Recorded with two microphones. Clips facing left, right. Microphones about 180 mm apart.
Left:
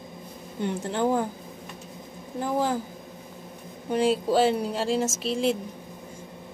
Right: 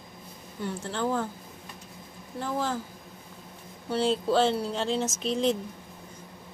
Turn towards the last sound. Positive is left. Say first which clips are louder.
# left 1 dB
turn(degrees=5)  # may be behind; listen again after turning